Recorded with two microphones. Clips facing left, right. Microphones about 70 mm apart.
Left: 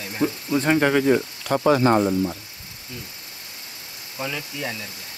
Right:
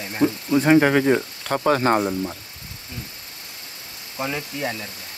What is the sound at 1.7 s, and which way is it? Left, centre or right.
Speech, right.